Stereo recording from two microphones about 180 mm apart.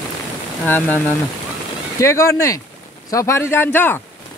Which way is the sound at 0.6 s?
10° left (ahead or behind).